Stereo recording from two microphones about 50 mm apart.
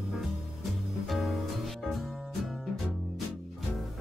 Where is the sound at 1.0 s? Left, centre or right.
Centre.